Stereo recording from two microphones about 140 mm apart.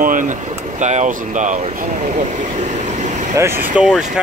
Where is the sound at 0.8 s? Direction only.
60° right (ahead or behind).